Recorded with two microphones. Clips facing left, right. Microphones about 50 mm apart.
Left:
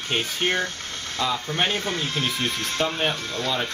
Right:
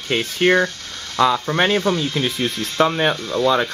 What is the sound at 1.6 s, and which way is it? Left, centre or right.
Speech, right.